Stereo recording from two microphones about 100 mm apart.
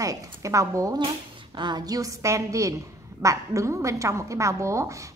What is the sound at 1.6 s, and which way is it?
A woman's voice, 45° right (ahead or behind).